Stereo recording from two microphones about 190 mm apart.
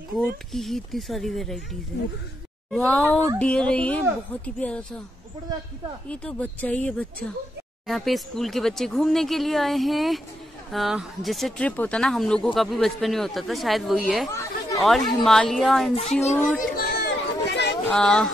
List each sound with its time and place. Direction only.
0.5 s speech: centre (ahead or behind)
2.7 s speech: 5° left (ahead or behind)
6.0 s speech: 5° left (ahead or behind)
14.3 s chatter: 15° left (ahead or behind)
14.8 s speech: centre (ahead or behind)
15.9 s speech: 35° left (ahead or behind)
16.7 s a sound: 60° left (ahead or behind)
17.8 s speech: 5° left (ahead or behind)